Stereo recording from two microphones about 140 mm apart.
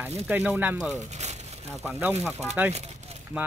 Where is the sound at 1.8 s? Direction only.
15° right (ahead or behind).